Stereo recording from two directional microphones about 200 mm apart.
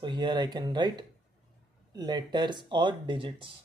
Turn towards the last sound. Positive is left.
turn(degrees=-25)  # may be behind; listen again after turning